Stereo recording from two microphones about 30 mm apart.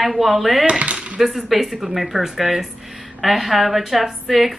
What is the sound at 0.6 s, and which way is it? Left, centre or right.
Dishes, right.